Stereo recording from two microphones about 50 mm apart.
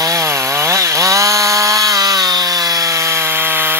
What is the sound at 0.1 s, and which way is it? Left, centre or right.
Chainsaw, right.